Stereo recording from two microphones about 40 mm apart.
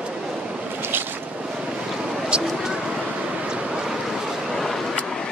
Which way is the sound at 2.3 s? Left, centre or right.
Right.